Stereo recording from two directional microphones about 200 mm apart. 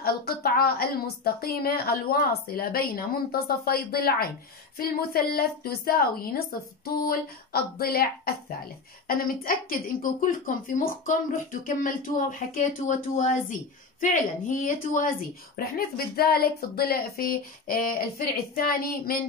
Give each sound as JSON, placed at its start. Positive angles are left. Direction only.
{"t": 0.0, "sound": "speech", "side_deg": 50}
{"t": 9.0, "sound": "speech", "side_deg": 45}